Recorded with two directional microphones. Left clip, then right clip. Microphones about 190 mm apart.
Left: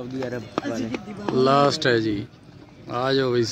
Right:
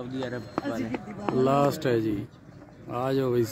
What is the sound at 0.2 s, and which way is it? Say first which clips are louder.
Speech: left 4 dB; 40° left (ahead or behind).